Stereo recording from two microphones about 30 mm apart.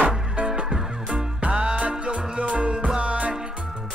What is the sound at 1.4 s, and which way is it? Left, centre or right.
Music, right.